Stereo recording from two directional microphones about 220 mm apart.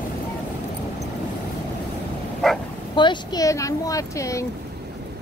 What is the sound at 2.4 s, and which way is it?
Bow-wow, centre (ahead or behind).